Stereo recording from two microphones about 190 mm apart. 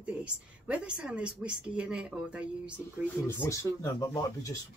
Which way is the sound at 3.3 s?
15° left (ahead or behind).